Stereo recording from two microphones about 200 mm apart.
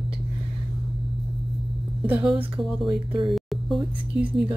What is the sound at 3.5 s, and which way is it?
Speech, 5° right (ahead or behind).